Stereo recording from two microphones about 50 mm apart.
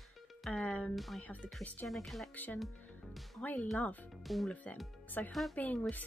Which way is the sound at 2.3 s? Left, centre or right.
Left.